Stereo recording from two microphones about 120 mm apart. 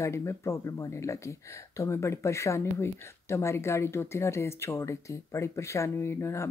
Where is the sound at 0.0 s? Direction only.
25° left (ahead or behind).